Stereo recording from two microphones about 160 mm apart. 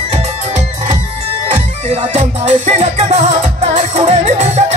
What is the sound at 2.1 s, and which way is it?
Music, 40° right (ahead or behind).